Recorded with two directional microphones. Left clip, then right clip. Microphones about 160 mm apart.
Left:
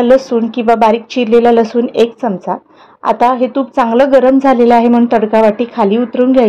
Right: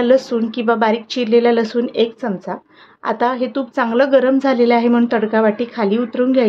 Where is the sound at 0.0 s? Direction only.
10° left (ahead or behind).